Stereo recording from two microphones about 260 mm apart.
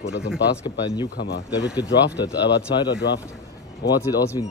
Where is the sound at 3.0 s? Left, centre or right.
Left.